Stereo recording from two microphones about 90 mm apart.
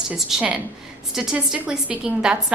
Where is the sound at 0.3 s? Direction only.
5° right (ahead or behind).